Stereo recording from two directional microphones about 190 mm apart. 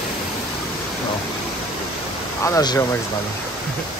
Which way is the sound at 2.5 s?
15° left (ahead or behind).